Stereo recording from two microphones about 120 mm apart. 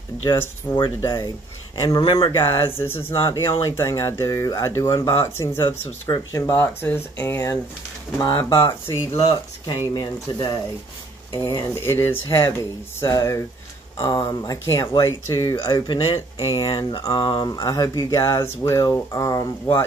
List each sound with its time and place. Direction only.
0.3 s speech: 40° left (ahead or behind)
2.3 s speech: 20° left (ahead or behind)
9.9 s speech: 35° left (ahead or behind)
13.9 s speech: 45° left (ahead or behind)
16.5 s speech: 35° left (ahead or behind)